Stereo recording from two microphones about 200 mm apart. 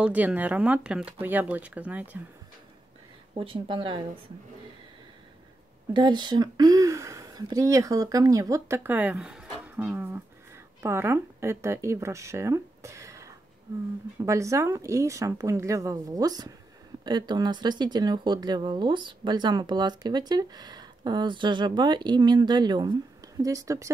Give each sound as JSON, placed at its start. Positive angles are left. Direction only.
{"t": 0.0, "sound": "a woman's voice", "side_deg": -5}
{"t": 3.3, "sound": "speech", "side_deg": -25}
{"t": 5.9, "sound": "a woman's voice", "side_deg": -20}